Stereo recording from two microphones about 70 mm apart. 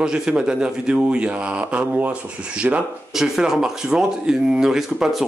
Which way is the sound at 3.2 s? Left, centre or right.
Centre.